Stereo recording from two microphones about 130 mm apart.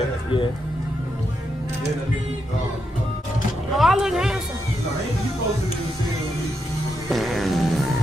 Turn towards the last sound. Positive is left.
turn(degrees=0)  # may be behind; listen again after turning